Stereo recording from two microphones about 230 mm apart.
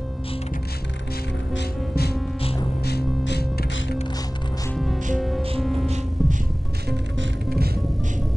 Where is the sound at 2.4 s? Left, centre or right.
Left.